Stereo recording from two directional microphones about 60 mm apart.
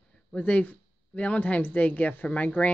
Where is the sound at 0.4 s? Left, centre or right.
Left.